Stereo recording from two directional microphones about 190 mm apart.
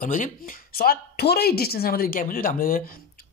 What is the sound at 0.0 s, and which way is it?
A woman's voice, 45° left (ahead or behind).